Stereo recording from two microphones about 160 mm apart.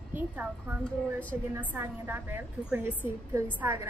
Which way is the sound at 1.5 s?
15° right (ahead or behind).